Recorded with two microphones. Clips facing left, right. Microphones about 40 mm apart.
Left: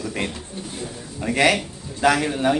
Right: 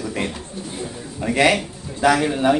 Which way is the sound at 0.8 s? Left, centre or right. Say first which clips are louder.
Right 3 dB; centre.